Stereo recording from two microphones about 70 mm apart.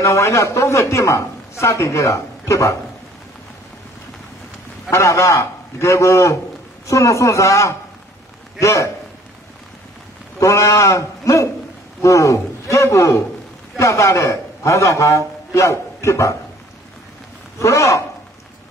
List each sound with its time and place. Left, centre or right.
0.0 s a man's voice: left
4.9 s a man's voice: left
10.4 s a man's voice: left
17.6 s a man's voice: left